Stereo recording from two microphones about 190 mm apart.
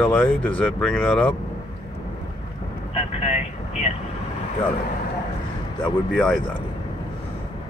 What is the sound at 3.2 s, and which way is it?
Vehicle, 35° left (ahead or behind).